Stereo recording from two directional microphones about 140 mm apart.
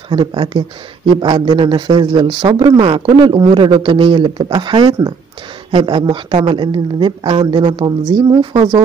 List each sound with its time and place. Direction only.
0.1 s speech: 35° right (ahead or behind)